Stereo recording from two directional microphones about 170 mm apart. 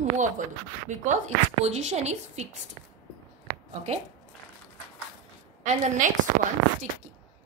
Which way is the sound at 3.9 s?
40° right (ahead or behind).